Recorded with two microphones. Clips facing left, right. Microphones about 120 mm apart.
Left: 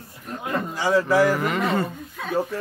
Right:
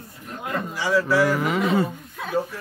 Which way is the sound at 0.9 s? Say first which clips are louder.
Left 1 dB; 20° left (ahead or behind).